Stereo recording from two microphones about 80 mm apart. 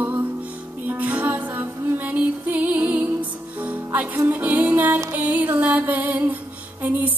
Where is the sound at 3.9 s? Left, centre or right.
Right.